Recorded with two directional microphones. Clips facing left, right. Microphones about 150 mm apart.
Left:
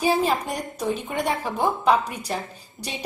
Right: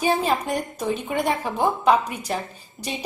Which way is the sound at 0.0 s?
Centre (ahead or behind).